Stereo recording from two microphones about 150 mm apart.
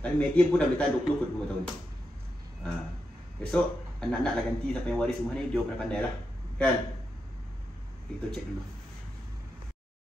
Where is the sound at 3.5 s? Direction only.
5° left (ahead or behind).